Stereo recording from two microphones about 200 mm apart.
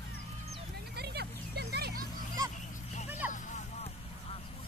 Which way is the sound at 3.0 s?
10° right (ahead or behind).